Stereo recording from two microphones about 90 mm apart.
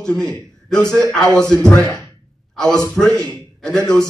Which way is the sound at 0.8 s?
35° right (ahead or behind).